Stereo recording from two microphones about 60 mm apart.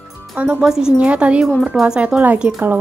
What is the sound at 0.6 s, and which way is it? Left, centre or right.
Speech, centre.